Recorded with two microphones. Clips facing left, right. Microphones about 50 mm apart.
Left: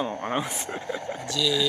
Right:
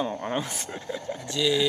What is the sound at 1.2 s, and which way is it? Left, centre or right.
Speech, right.